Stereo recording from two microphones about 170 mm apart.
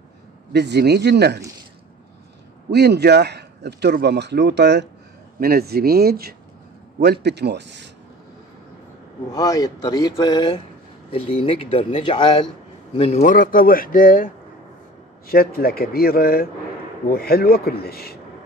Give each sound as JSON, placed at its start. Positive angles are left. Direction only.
{"t": 0.5, "sound": "a man's voice", "side_deg": -75}
{"t": 2.7, "sound": "a man's voice", "side_deg": -75}
{"t": 5.4, "sound": "a man's voice", "side_deg": -65}
{"t": 9.3, "sound": "speech", "side_deg": 20}
{"t": 12.9, "sound": "speech", "side_deg": 40}